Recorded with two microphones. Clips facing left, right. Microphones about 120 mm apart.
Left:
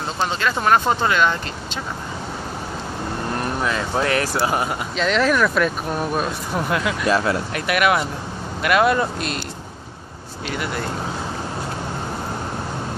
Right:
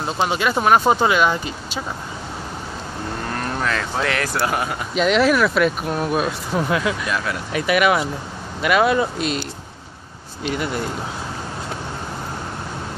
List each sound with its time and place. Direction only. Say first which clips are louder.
0.2 s speech: right 2 dB; 15° right (ahead or behind)
4.0 s speech: left 2 dB; 25° left (ahead or behind)
4.9 s speech: right 3 dB; 10° right (ahead or behind)
7.1 s speech: left 5 dB; 30° left (ahead or behind)
7.5 s speech: right 4 dB; centre (ahead or behind)
10.4 s speech: right 3 dB; 25° right (ahead or behind)